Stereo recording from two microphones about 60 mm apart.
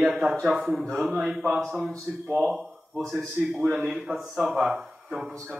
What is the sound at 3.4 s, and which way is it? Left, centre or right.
Speech, centre.